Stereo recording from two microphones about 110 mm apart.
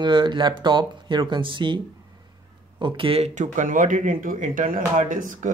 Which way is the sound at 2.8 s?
55° right (ahead or behind).